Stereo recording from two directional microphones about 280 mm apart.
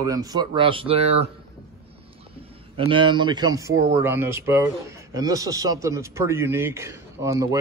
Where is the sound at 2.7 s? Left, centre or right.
Centre.